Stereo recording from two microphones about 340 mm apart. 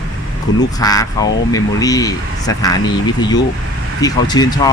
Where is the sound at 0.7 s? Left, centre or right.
Centre.